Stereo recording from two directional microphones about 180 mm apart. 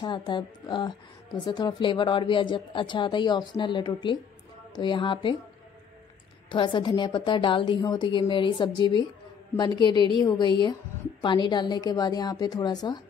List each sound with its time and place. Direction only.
0.0 s a woman's voice: 25° left (ahead or behind)
6.5 s a woman's voice: 25° left (ahead or behind)